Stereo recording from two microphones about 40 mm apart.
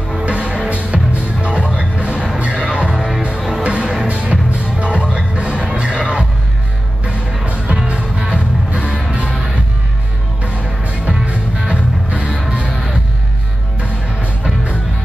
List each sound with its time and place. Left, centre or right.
0.2 s music: right
7.4 s music: right
7.8 s music: right
10.4 s music: right
12.6 s music: centre